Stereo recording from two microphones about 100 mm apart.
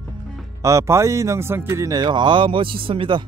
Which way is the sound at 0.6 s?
30° right (ahead or behind).